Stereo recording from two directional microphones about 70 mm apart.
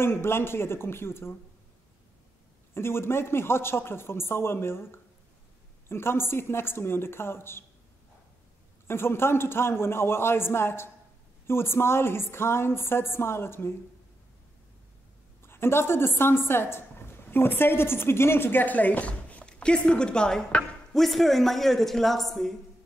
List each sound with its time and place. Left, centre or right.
0.0 s a woman's voice: left
2.7 s a woman's voice: left
8.8 s a woman's voice: left
15.4 s a woman's voice: left; by 22.6 s centre